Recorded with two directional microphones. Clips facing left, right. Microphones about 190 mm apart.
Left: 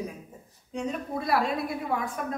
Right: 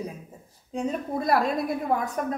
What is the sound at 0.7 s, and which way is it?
A woman's voice, 40° right (ahead or behind).